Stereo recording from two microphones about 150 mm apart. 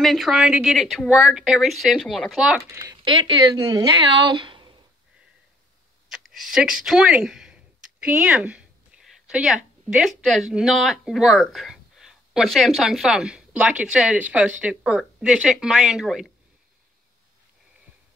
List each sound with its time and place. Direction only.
0.0 s speech: centre (ahead or behind)
2.7 s speech: 25° right (ahead or behind)
6.0 s speech: centre (ahead or behind)